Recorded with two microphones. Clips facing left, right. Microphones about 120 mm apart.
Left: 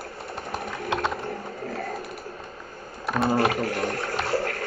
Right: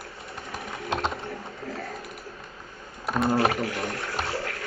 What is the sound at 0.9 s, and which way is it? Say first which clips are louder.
Typing: left 1 dB; 30° right (ahead or behind).